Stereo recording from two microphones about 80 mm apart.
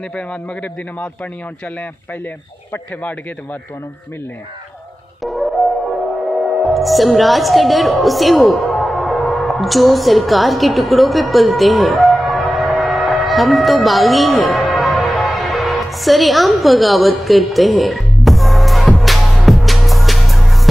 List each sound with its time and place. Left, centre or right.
0.1 s a man's voice: centre
2.7 s a man's voice: centre
5.2 s music: centre
6.6 s music: centre